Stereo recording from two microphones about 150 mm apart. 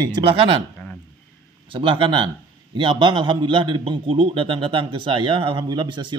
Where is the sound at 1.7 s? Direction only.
35° right (ahead or behind).